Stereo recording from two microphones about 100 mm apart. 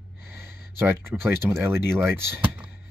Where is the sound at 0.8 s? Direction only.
25° right (ahead or behind).